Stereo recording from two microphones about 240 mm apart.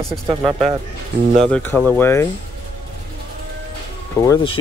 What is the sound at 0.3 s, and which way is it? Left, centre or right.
Speech, centre.